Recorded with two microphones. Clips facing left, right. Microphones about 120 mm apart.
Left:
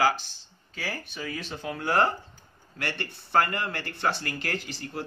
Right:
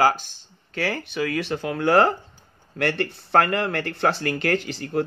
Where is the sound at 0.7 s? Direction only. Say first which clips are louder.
Right 9 dB; 75° right (ahead or behind).